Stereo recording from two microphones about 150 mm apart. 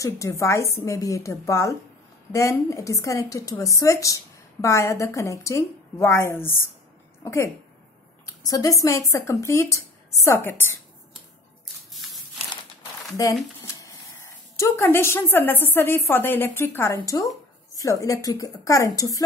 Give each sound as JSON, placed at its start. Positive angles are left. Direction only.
{"t": 0.0, "sound": "a woman's voice", "side_deg": 20}
{"t": 13.1, "sound": "a sound", "side_deg": 20}
{"t": 14.6, "sound": "a woman's voice", "side_deg": 20}